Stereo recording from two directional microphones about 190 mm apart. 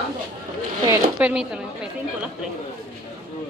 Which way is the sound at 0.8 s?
10° right (ahead or behind).